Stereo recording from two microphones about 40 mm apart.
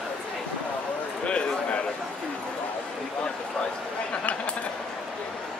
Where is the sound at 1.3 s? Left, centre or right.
Left.